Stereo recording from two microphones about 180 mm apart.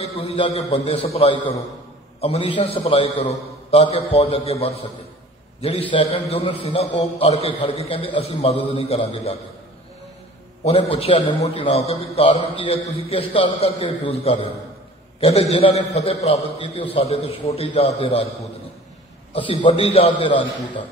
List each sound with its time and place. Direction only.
0.0 s a man's voice: 35° left (ahead or behind)
10.6 s a man's voice: 35° left (ahead or behind)
19.3 s a man's voice: 30° left (ahead or behind)